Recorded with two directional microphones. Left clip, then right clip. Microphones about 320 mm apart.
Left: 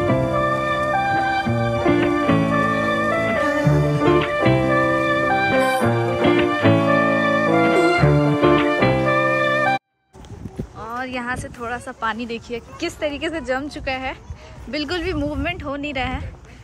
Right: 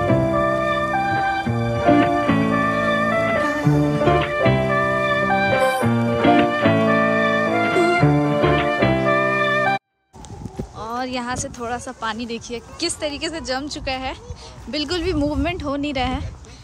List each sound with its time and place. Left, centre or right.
0.0 s music: centre
10.8 s speech: centre